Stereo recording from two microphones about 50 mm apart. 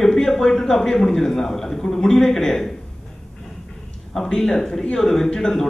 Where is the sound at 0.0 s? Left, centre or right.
Centre.